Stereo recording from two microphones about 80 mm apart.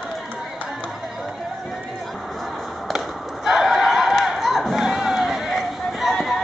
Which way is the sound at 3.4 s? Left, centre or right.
Centre.